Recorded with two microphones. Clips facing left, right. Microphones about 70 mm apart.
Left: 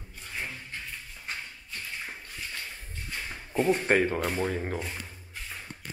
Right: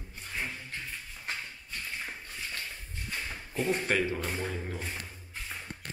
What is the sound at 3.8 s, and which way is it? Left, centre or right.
Speech, left.